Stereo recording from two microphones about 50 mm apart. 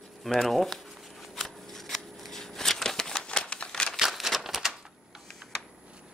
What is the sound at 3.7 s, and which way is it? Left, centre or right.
Crumpling, centre.